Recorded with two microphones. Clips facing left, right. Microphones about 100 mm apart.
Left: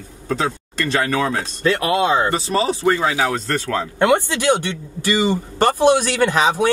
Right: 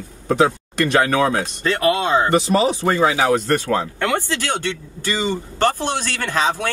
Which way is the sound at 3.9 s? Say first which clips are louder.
Left 5 dB; 20° left (ahead or behind).